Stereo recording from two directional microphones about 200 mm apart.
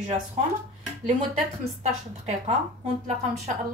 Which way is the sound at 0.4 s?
30° right (ahead or behind).